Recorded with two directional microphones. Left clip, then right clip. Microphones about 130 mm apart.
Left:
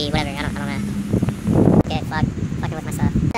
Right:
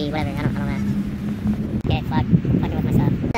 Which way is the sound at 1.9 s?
20° left (ahead or behind).